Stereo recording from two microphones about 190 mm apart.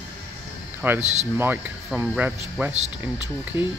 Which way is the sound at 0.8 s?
10° right (ahead or behind).